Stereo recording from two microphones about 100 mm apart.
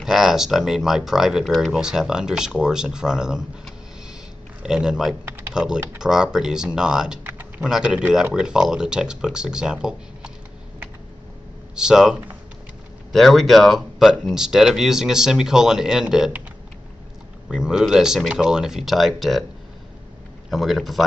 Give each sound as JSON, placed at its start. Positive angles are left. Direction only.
{"t": 0.0, "sound": "speech", "side_deg": -5}
{"t": 4.6, "sound": "speech", "side_deg": -5}
{"t": 7.2, "sound": "typing", "side_deg": -20}
{"t": 7.6, "sound": "speech", "side_deg": -10}
{"t": 11.7, "sound": "speech", "side_deg": -5}
{"t": 17.5, "sound": "speech", "side_deg": -5}
{"t": 20.4, "sound": "speech", "side_deg": 0}